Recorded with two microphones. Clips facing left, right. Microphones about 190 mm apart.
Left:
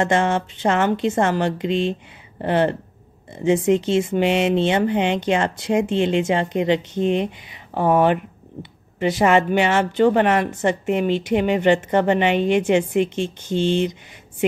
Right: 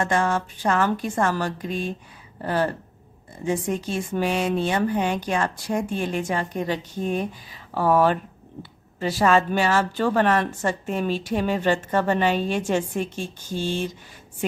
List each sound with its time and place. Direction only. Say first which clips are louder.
0.0 s a woman's voice: left 4 dB; 25° left (ahead or behind)